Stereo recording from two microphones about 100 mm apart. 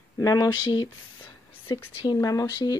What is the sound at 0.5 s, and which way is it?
Speech, 50° left (ahead or behind).